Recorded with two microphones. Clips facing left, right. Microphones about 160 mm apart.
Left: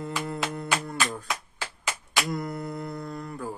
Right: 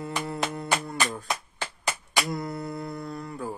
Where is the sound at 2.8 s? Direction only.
30° right (ahead or behind).